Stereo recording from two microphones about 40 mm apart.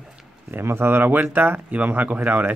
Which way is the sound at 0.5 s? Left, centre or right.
Right.